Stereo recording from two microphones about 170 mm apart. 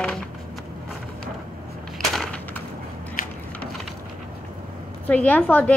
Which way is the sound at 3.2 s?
55° left (ahead or behind).